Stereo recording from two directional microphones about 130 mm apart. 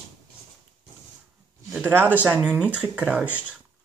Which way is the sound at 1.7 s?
15° right (ahead or behind).